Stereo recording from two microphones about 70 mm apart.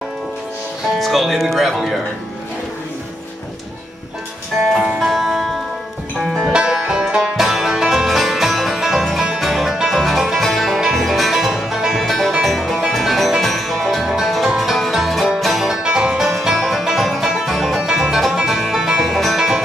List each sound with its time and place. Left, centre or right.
0.9 s speech: centre
4.7 s music: centre
5.1 s music: centre
6.4 s music: centre